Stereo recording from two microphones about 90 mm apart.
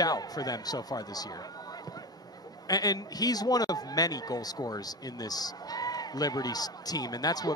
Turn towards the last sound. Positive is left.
turn(degrees=45)  # may be behind; listen again after turning